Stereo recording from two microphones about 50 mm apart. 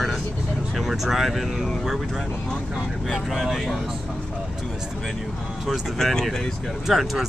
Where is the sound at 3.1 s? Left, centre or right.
Centre.